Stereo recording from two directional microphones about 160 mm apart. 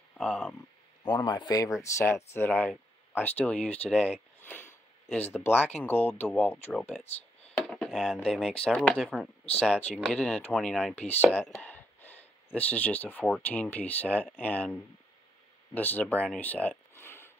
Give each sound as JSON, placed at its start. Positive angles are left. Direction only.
{"t": 0.2, "sound": "speech", "side_deg": 5}
{"t": 1.0, "sound": "a man's voice", "side_deg": 25}
{"t": 4.4, "sound": "a sound", "side_deg": 15}
{"t": 5.1, "sound": "speech", "side_deg": 10}
{"t": 7.5, "sound": "a sound", "side_deg": 5}
{"t": 8.2, "sound": "speech", "side_deg": 5}
{"t": 11.6, "sound": "gasp", "side_deg": 10}
{"t": 12.5, "sound": "speech", "side_deg": 10}